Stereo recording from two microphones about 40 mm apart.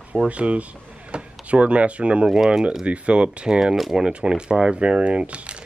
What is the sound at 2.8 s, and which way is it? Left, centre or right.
Speech, right.